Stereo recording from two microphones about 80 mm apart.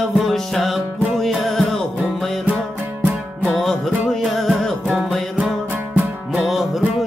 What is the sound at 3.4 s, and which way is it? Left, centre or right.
Music, centre.